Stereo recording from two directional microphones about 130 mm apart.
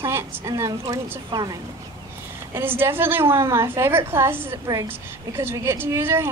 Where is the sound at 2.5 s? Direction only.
15° right (ahead or behind).